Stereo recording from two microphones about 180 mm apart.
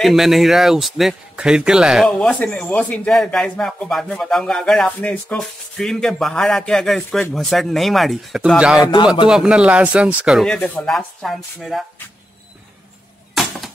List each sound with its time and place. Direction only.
0.0 s speech: centre (ahead or behind)
8.7 s speech: 20° left (ahead or behind)
9.3 s speech: 5° right (ahead or behind)
13.3 s a sound: centre (ahead or behind)